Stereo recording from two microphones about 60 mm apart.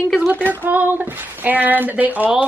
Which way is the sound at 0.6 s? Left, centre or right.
Right.